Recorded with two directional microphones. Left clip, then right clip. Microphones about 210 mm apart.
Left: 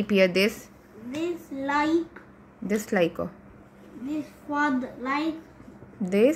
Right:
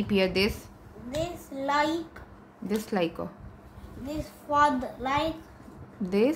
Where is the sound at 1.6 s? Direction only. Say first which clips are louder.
Even; 35° right (ahead or behind).